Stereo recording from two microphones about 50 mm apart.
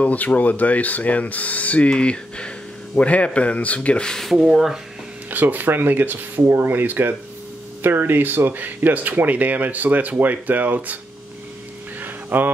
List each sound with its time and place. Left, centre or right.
0.0 s speech: left
4.0 s speech: centre
4.3 s speech: centre
5.3 s speech: right
6.4 s speech: right
12.0 s a sound: right